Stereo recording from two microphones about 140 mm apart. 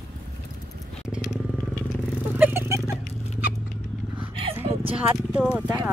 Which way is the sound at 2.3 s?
15° right (ahead or behind).